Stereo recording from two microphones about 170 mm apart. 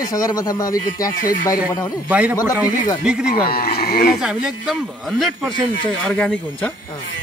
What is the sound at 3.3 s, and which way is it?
Speech, 60° left (ahead or behind).